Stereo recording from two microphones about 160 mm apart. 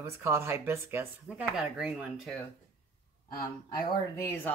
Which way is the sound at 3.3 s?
25° left (ahead or behind).